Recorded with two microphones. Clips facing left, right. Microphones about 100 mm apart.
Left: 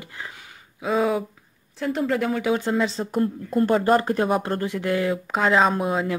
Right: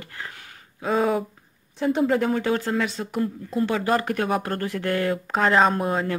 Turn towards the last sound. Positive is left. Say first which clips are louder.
# even
turn(degrees=0)  # may be behind; listen again after turning